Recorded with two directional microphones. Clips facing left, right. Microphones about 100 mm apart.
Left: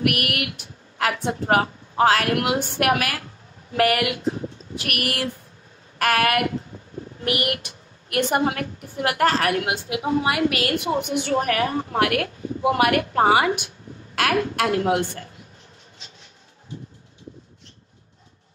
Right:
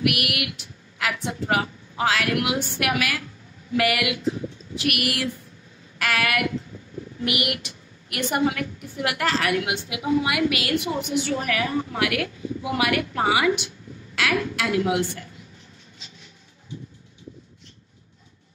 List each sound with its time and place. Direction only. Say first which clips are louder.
0.0 s a woman's voice: left 1 dB; 45° left (ahead or behind)